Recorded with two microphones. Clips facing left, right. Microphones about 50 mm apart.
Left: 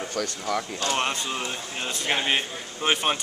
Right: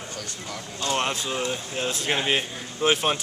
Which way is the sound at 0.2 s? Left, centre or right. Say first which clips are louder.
Left 8 dB; left.